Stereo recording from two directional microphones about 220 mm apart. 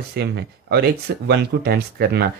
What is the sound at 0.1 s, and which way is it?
Speech, 45° right (ahead or behind).